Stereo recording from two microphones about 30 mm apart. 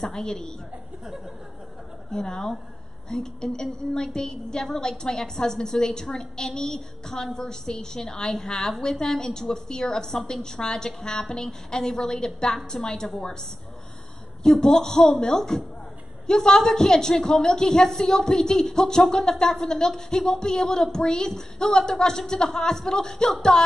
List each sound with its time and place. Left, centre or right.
0.0 s a woman's voice: centre
2.0 s a woman's voice: centre
14.4 s a woman's voice: centre